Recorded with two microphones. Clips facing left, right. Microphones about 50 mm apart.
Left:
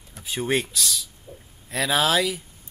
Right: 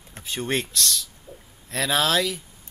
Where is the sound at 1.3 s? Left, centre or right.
Left.